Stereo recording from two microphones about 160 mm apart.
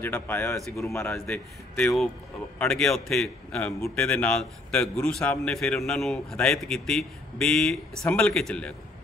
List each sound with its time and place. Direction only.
0.0 s a man's voice: 15° left (ahead or behind)